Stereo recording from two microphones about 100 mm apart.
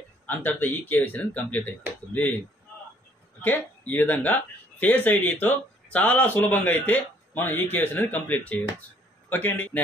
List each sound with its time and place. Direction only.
0.3 s speech: 20° left (ahead or behind)
3.4 s speech: 20° left (ahead or behind)